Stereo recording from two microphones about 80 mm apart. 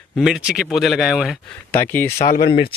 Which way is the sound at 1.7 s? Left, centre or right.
Left.